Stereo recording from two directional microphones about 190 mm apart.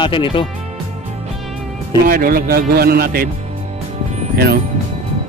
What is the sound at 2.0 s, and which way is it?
A man's voice, 50° right (ahead or behind).